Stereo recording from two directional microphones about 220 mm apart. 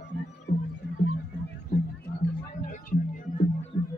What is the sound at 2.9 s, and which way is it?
Music, 40° left (ahead or behind).